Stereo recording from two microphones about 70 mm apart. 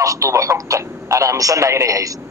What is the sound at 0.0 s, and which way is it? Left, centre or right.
A man's voice, right.